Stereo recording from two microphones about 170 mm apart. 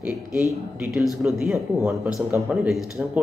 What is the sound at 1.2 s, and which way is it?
A man's voice, 5° right (ahead or behind).